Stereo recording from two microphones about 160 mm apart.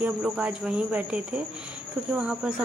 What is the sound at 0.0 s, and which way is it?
Speech, 5° right (ahead or behind).